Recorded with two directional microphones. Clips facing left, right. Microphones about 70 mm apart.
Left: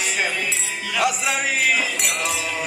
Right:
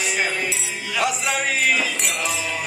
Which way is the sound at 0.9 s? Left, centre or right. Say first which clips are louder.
Left 1 dB; centre.